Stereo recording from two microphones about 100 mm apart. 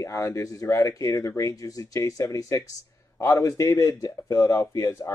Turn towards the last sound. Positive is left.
turn(degrees=30)  # may be behind; listen again after turning